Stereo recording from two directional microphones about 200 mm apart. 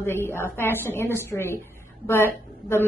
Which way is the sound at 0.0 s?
10° left (ahead or behind).